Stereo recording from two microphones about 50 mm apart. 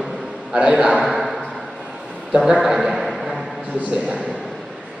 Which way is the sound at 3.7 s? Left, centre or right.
Right.